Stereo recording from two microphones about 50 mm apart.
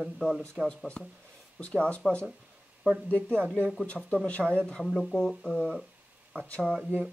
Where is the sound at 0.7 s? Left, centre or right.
Left.